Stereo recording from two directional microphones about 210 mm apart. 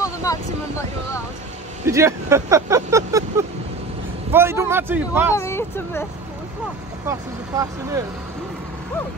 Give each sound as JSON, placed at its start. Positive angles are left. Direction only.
{"t": 0.0, "sound": "a sound", "side_deg": 15}
{"t": 1.9, "sound": "speech", "side_deg": -15}
{"t": 5.3, "sound": "speech", "side_deg": 10}
{"t": 7.1, "sound": "speech", "side_deg": -15}